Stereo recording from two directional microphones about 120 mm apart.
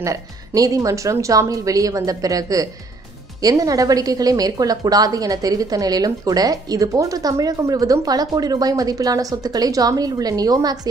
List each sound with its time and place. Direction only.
0.0 s a woman's voice: 25° right (ahead or behind)